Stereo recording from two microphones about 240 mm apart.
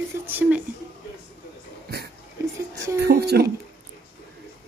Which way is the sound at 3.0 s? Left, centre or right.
Right.